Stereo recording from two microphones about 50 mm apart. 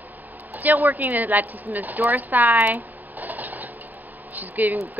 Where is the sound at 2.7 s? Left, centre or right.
Right.